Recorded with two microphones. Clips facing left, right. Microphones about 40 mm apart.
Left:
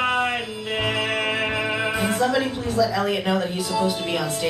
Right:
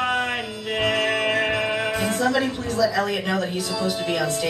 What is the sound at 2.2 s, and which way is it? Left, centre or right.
A man's voice, centre.